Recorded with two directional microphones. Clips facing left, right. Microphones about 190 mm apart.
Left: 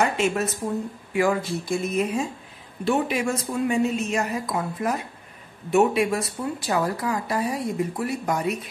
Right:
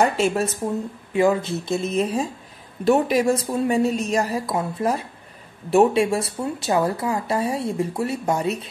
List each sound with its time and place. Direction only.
0.0 s speech: 35° right (ahead or behind)
1.1 s speech: 25° right (ahead or behind)